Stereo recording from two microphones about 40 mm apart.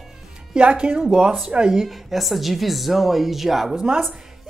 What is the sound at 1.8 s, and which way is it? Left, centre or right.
Speech, centre.